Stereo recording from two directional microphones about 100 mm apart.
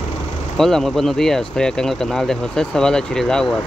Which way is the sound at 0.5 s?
5° left (ahead or behind).